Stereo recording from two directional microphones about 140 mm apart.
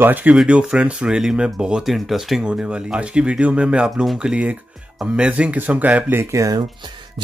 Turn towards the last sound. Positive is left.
turn(degrees=-20)  # may be behind; listen again after turning